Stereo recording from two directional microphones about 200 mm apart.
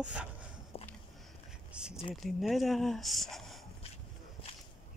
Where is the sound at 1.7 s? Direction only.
5° right (ahead or behind).